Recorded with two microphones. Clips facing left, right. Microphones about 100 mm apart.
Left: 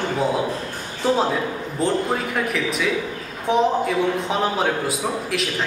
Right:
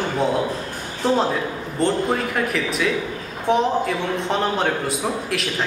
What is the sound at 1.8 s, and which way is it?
A man's voice, centre (ahead or behind).